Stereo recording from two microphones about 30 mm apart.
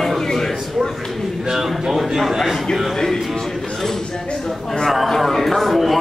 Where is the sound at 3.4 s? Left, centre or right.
Centre.